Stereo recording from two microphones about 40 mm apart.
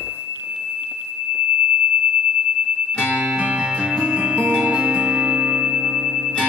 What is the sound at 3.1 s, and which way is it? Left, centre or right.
Music, right.